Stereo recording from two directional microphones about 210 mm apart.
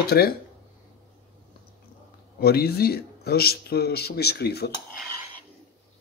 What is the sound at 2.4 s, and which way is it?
Speech, 50° left (ahead or behind).